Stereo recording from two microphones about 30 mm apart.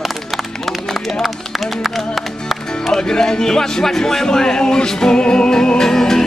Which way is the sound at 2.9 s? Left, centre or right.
Left.